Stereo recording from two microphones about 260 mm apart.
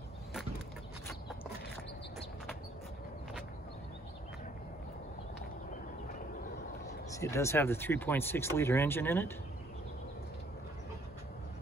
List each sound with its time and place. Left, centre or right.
7.1 s speech: centre